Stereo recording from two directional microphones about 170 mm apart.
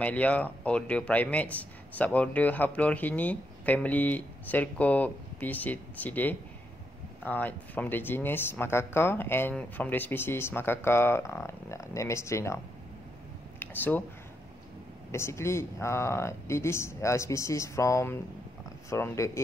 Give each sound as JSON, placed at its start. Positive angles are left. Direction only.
{"t": 0.0, "sound": "speech", "side_deg": 10}
{"t": 13.6, "sound": "a sound", "side_deg": 10}
{"t": 15.0, "sound": "speech", "side_deg": 15}